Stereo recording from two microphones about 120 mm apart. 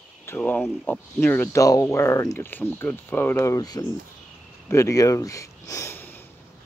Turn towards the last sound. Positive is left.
turn(degrees=20)  # may be behind; listen again after turning